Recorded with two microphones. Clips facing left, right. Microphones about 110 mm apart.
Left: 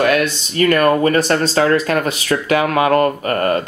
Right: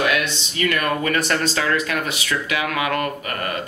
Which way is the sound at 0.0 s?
45° left (ahead or behind).